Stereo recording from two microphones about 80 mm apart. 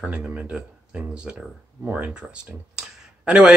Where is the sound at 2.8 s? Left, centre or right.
Centre.